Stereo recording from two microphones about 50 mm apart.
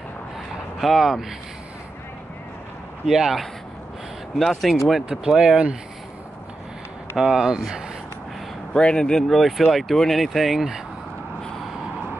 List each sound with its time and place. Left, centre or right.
0.7 s speech: centre
3.1 s speech: centre
5.2 s speech: centre
7.2 s speech: centre
8.7 s speech: centre
9.7 s speech: centre